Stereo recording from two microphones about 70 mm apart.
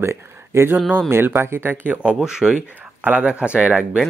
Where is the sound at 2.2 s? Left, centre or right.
Centre.